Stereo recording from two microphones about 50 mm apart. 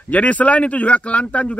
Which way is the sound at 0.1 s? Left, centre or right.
Left.